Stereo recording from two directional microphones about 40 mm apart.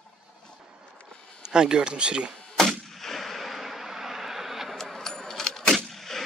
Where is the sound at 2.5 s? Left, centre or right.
Centre.